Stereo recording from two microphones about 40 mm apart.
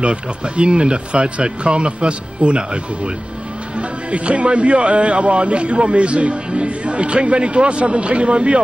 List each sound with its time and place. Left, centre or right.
0.0 s speech: right